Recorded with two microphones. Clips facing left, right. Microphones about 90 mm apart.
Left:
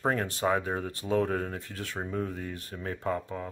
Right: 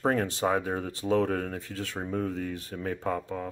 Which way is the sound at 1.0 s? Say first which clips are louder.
Right 2 dB; 40° right (ahead or behind).